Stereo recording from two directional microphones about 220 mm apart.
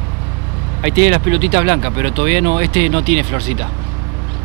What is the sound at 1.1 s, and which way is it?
Speech, 15° right (ahead or behind).